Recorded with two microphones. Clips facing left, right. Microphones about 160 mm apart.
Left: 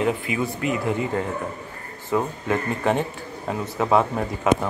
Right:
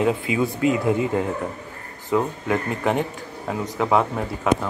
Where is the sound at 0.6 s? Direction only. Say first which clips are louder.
Right 6 dB; 20° right (ahead or behind).